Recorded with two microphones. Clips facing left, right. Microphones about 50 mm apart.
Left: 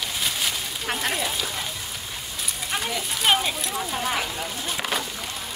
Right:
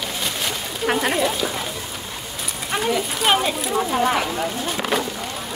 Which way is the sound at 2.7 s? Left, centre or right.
Centre.